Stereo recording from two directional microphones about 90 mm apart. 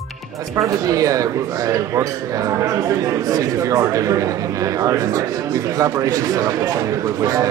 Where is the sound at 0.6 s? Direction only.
40° right (ahead or behind).